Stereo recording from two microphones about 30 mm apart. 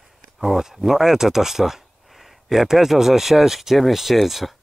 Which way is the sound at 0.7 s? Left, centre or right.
Centre.